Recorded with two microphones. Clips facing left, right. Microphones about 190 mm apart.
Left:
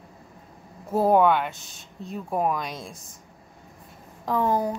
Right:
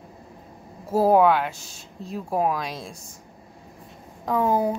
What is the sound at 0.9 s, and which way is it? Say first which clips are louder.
Speech: right 2 dB; centre (ahead or behind).